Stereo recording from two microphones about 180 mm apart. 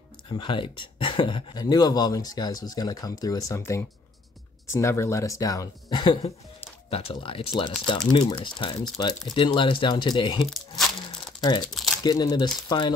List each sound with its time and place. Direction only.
0.3 s speech: 25° left (ahead or behind)
12.0 s speech: 20° left (ahead or behind)